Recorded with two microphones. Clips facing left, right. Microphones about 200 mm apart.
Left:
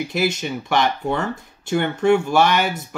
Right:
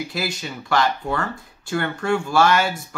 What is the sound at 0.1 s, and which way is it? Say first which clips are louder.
Speech: left 6 dB; 20° left (ahead or behind).